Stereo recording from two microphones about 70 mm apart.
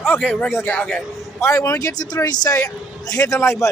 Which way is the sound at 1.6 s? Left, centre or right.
Left.